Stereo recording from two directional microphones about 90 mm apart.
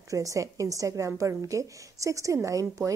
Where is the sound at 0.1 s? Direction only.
35° right (ahead or behind).